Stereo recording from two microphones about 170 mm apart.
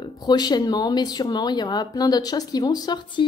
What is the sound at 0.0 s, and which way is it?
Speech, 25° left (ahead or behind).